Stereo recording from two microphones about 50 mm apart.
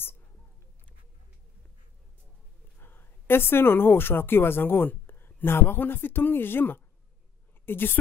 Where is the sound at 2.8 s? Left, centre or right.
Left.